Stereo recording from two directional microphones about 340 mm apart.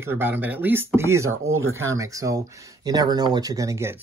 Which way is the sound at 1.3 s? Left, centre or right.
Right.